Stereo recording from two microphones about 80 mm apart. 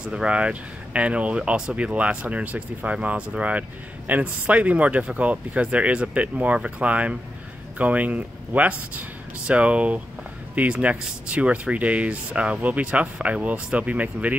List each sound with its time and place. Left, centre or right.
0.1 s speech: centre